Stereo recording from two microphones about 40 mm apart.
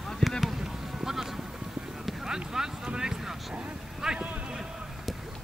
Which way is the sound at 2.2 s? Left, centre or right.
Centre.